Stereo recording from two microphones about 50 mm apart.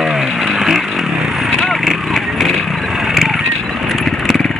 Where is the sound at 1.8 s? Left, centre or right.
Centre.